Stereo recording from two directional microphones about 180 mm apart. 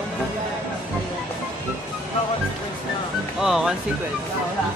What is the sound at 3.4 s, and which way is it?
Speech, centre (ahead or behind).